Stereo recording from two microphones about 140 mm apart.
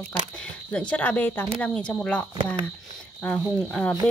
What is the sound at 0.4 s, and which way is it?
Speech, 5° left (ahead or behind).